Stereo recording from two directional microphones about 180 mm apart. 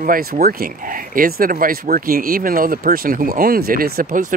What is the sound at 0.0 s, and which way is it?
Speech, 55° right (ahead or behind).